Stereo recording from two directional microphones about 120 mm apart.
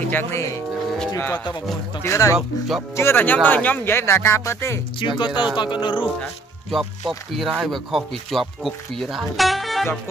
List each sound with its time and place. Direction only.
0.1 s speech: 20° left (ahead or behind)
1.1 s music: 20° left (ahead or behind)
2.0 s speech: 25° left (ahead or behind)
5.0 s speech: 40° left (ahead or behind)
6.7 s speech: centre (ahead or behind)